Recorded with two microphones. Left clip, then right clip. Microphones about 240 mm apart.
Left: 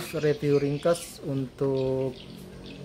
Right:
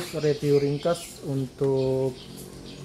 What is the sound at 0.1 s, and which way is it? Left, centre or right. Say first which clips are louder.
Speech: right 1 dB; centre.